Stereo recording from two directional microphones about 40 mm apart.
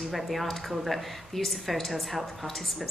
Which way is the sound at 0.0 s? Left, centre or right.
Centre.